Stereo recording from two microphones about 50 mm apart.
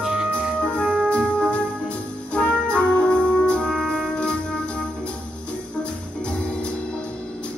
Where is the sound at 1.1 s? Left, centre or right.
Left.